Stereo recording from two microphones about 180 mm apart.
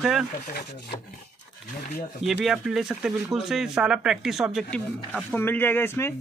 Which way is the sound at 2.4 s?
Centre (ahead or behind).